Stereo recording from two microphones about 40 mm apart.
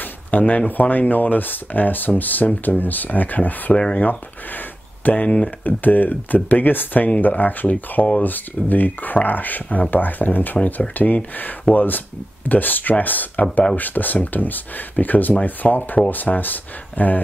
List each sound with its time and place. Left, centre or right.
0.0 s a sound: left
0.7 s speech: left
5.2 s speech: left
5.6 s speech: left